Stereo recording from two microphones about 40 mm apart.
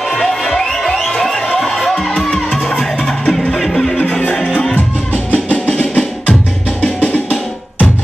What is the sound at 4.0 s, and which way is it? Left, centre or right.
Music, left.